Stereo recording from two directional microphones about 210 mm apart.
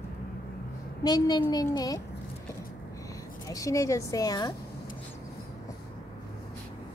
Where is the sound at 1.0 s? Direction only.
20° left (ahead or behind).